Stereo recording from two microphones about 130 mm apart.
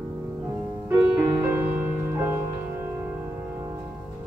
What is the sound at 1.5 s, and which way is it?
Music, 15° right (ahead or behind).